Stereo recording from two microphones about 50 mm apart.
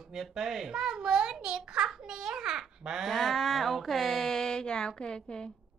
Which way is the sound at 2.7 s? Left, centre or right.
Centre.